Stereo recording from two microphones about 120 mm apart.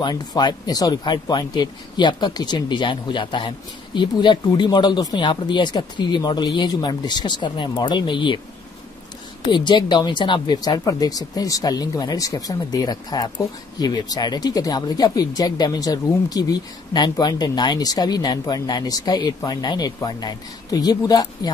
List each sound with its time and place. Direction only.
0.0 s speech: 35° left (ahead or behind)
9.4 s speech: 40° left (ahead or behind)